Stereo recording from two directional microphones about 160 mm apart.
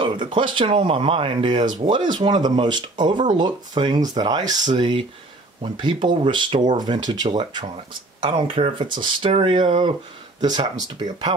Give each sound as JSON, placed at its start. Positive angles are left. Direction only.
{"t": 0.0, "sound": "speech", "side_deg": -30}